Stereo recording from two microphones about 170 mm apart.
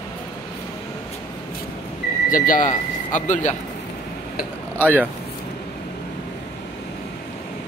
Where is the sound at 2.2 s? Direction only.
55° left (ahead or behind).